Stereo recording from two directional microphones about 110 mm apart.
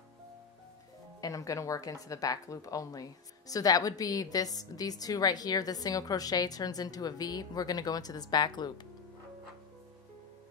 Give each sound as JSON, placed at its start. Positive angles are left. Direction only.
{"t": 1.2, "sound": "speech", "side_deg": 30}